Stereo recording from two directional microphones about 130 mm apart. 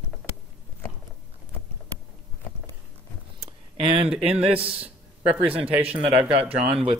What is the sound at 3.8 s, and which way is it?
Speech, 45° right (ahead or behind).